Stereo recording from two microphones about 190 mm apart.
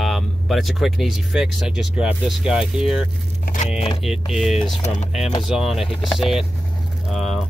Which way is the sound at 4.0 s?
Centre (ahead or behind).